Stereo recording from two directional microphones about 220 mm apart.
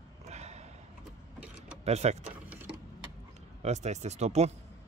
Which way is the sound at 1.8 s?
30° right (ahead or behind).